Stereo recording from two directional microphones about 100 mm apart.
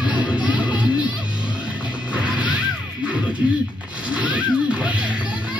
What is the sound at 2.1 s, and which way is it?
Music, 10° right (ahead or behind).